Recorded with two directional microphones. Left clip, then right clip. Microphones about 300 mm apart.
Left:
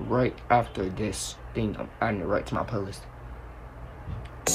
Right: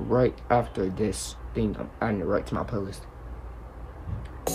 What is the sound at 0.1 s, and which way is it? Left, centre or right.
Speech, centre.